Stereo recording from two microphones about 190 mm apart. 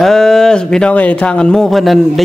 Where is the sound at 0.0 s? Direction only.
Centre (ahead or behind).